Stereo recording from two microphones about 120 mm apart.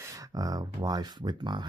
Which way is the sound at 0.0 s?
30° right (ahead or behind).